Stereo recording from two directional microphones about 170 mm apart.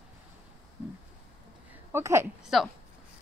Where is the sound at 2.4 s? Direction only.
Centre (ahead or behind).